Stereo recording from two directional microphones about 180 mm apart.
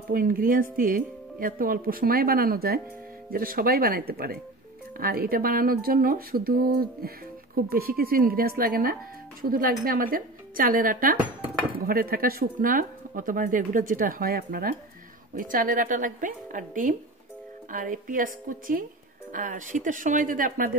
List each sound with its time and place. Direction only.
0.1 s speech: 50° right (ahead or behind)